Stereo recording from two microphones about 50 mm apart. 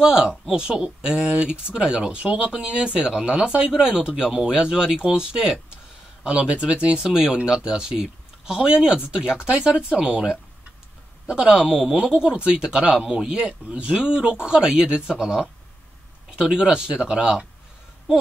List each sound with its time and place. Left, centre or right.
0.0 s speech: centre
11.7 s speech: centre